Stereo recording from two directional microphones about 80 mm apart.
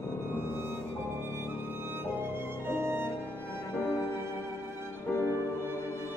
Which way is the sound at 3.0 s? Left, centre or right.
Left.